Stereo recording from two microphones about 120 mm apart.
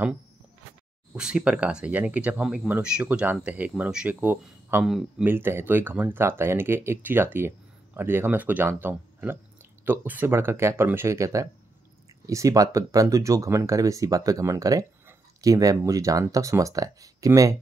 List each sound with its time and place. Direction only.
1.1 s speech: 5° right (ahead or behind); by 17.6 s 30° right (ahead or behind)